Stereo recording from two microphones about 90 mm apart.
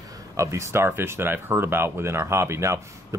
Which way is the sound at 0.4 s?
35° right (ahead or behind).